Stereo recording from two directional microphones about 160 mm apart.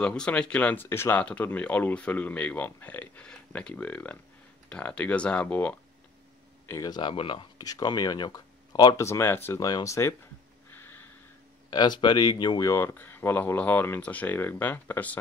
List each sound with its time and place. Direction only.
0.0 s speech: 5° left (ahead or behind)
6.7 s speech: 25° left (ahead or behind)
10.7 s a sound: 15° left (ahead or behind)
11.7 s speech: 25° left (ahead or behind); by 15.1 s 10° left (ahead or behind)